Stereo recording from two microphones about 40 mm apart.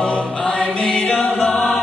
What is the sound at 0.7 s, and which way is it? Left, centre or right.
Choir, left.